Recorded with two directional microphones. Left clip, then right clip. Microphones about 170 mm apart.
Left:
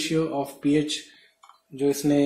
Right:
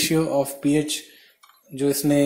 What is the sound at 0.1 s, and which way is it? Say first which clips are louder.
Speech: right 4 dB; 35° right (ahead or behind).